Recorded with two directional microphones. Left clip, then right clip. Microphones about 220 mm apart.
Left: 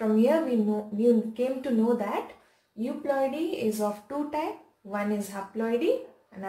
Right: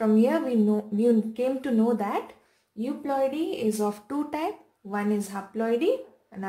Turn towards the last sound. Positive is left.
turn(degrees=-50)  # may be behind; listen again after turning